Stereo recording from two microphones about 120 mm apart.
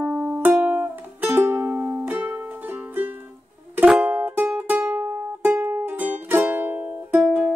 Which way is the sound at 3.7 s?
10° right (ahead or behind).